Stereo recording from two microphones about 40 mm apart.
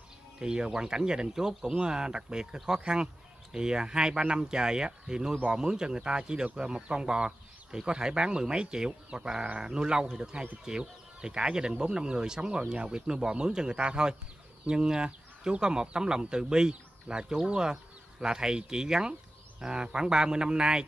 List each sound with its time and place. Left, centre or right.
0.4 s speech: centre